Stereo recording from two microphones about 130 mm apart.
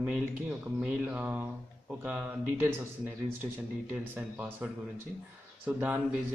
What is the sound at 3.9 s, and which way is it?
Speech, 15° right (ahead or behind).